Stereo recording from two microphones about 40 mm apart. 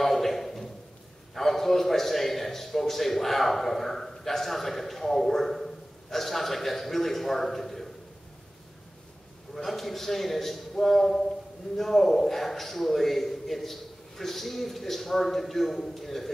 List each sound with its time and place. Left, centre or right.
0.0 s a sound: centre
1.3 s a man's voice: centre
9.6 s a man's voice: centre